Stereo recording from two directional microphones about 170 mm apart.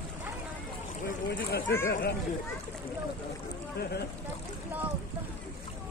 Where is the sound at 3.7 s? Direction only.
70° left (ahead or behind).